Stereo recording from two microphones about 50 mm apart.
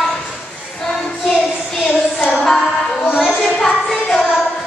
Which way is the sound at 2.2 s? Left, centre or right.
Left.